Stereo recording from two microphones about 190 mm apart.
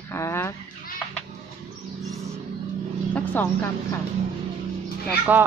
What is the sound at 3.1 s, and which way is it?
Speech, 10° left (ahead or behind).